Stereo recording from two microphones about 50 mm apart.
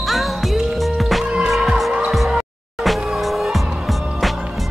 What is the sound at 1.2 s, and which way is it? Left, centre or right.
Music, centre.